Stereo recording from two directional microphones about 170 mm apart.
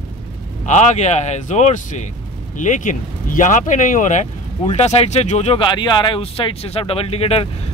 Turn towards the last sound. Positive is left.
turn(degrees=35)  # may be behind; listen again after turning